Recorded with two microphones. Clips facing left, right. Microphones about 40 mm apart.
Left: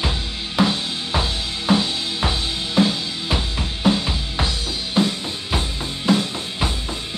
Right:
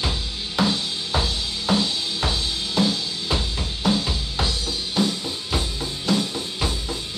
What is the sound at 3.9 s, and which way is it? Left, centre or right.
Drum, left.